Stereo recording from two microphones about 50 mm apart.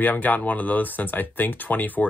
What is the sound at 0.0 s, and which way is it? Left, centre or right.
Speech, left.